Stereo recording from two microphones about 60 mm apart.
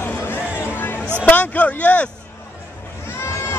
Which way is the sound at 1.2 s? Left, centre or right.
Left.